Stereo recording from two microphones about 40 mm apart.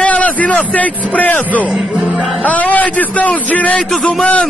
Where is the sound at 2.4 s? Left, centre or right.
Left.